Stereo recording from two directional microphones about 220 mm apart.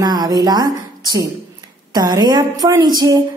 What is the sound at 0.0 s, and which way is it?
A woman's voice, 20° right (ahead or behind).